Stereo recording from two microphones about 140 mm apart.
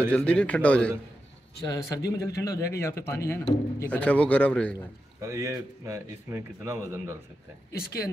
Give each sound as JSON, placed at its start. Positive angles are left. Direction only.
{"t": 0.1, "sound": "speech", "side_deg": 10}
{"t": 1.7, "sound": "a man's voice", "side_deg": 25}
{"t": 5.2, "sound": "speech", "side_deg": -20}
{"t": 7.7, "sound": "speech", "side_deg": 90}